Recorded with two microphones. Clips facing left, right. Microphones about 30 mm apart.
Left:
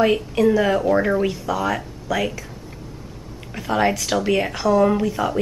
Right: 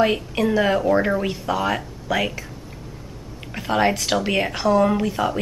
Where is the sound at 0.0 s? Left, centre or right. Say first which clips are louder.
Left 3 dB; centre.